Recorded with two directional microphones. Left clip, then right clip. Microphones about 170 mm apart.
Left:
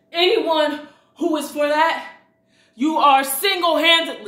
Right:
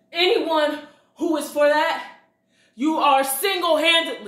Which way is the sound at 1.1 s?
15° left (ahead or behind).